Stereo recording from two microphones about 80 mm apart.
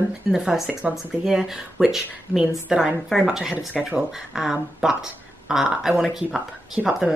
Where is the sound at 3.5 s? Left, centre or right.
Right.